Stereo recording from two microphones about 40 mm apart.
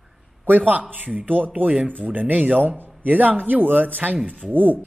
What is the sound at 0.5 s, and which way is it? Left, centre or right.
Speech, right.